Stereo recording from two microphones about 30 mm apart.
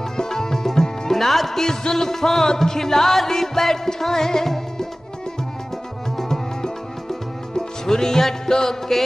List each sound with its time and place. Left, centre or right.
0.2 s music: centre
1.1 s music: centre
1.6 s music: left
6.1 s music: centre